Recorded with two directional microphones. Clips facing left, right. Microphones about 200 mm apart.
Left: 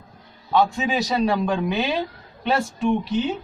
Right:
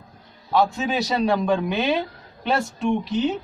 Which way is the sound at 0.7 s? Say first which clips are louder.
Left 1 dB; centre (ahead or behind).